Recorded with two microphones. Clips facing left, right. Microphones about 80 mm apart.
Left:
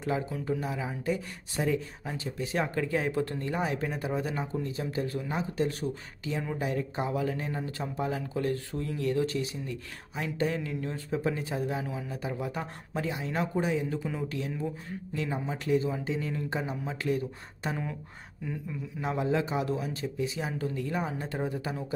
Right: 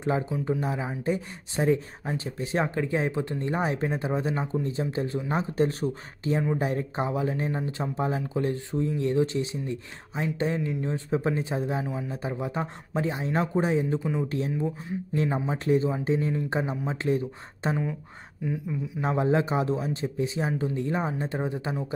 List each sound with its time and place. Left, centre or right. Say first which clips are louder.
0.5 s speech: right 2 dB; right
13.9 s speech: right 6 dB; centre
15.1 s speech: right 5 dB; right
18.4 s speech: right 6 dB; centre
18.9 s speech: right 4 dB; right